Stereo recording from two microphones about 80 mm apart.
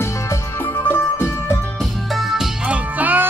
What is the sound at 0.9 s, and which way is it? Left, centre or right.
Music, left.